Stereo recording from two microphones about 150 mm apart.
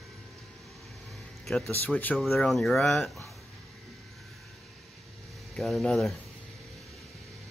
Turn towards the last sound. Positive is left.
turn(degrees=5)  # may be behind; listen again after turning